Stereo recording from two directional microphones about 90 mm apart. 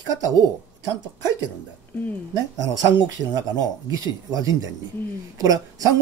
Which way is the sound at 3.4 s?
45° right (ahead or behind).